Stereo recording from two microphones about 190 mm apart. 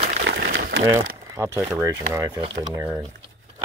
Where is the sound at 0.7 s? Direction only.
65° right (ahead or behind).